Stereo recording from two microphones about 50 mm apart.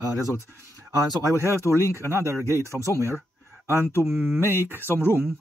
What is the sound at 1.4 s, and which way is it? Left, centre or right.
Speech, right.